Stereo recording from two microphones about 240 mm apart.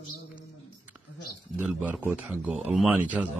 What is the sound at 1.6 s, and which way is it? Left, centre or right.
Speech, centre.